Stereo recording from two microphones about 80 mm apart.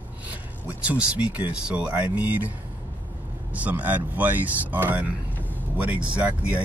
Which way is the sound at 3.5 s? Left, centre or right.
Centre.